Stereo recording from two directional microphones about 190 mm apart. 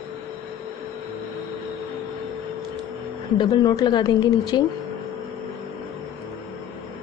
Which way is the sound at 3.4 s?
20° left (ahead or behind).